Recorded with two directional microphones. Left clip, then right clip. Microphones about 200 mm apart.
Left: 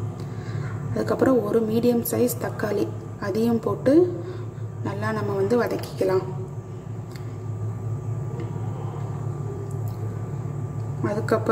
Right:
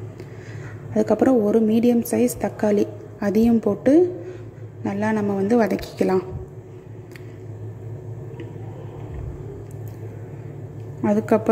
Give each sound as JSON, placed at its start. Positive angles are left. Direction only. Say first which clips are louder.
{"t": 0.9, "sound": "a woman's voice", "louder": "right 3 dB", "side_deg": -30}
{"t": 11.0, "sound": "a woman's voice", "louder": "right 4 dB", "side_deg": -35}